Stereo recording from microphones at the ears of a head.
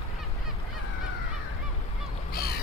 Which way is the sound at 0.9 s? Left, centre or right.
Left.